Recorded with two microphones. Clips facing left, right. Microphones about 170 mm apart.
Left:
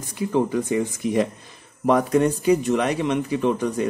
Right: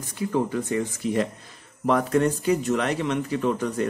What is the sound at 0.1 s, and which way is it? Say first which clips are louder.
Speech: left 3 dB; 15° left (ahead or behind).